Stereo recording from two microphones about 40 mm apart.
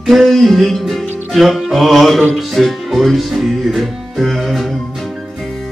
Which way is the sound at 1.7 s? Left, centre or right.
Centre.